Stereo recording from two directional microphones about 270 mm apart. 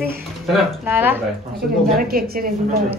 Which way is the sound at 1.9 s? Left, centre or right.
Right.